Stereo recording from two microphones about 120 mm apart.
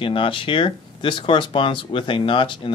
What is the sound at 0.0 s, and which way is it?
Speech, 45° left (ahead or behind).